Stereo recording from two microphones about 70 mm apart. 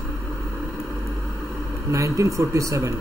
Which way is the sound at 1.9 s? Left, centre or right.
Right.